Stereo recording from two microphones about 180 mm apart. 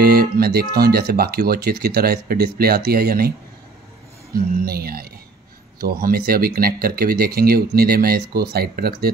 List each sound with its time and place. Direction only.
0.0 s speech: 60° right (ahead or behind)